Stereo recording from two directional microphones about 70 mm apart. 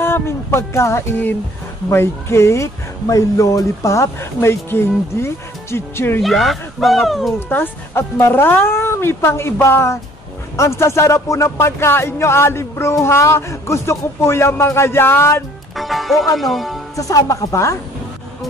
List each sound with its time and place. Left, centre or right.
0.0 s speech: left
6.2 s speech: centre
7.3 s speech: left
15.7 s music: centre
16.3 s speech: centre
16.9 s speech: left